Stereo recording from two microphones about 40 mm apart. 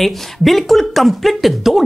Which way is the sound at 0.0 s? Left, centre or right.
Centre.